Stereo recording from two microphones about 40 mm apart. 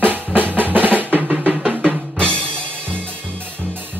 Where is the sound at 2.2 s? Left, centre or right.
Left.